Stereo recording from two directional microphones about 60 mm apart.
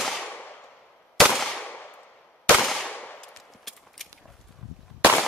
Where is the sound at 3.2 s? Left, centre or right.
Centre.